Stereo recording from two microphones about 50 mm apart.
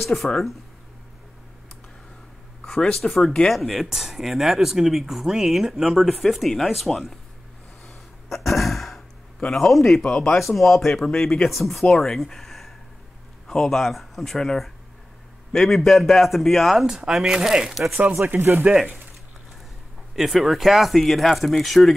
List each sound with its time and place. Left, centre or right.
0.0 s speech: centre
2.6 s speech: centre
7.8 s gasp: centre
9.5 s speech: centre
16.8 s speech: centre
18.2 s speech: right
18.6 s speech: centre
20.2 s speech: centre